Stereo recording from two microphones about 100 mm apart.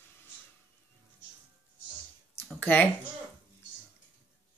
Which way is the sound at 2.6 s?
15° left (ahead or behind).